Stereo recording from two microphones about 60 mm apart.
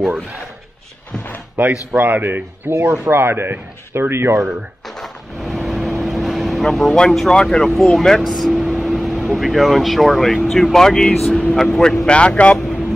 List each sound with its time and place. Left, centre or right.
1.9 s a man's voice: right
4.8 s vehicle: centre
6.9 s speech: centre
8.2 s speech: centre